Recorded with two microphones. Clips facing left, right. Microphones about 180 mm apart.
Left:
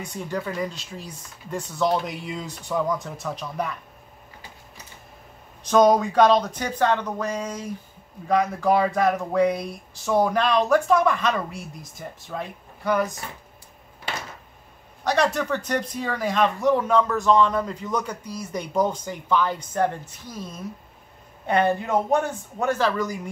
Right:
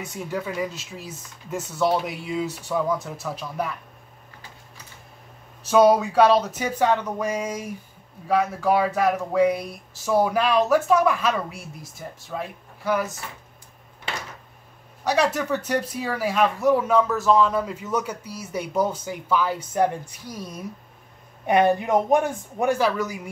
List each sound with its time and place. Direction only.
0.0 s speech: 5° right (ahead or behind)
5.6 s speech: 5° right (ahead or behind)
15.0 s speech: 10° right (ahead or behind)